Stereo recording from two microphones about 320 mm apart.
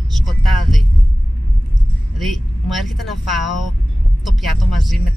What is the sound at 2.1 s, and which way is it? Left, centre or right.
Speech, centre.